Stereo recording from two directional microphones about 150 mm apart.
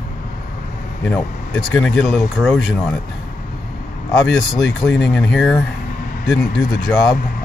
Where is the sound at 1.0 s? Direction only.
5° left (ahead or behind).